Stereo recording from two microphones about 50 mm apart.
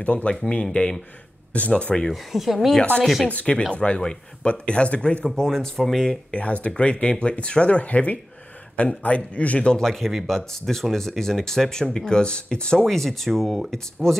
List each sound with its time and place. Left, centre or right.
0.0 s speech: left
1.7 s speech: centre
2.3 s speech: centre
3.3 s speech: left; by 6.1 s centre
6.3 s speech: left
9.8 s speech: centre
12.8 s speech: centre